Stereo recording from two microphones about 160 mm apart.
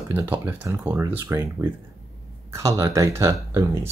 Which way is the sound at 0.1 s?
10° right (ahead or behind).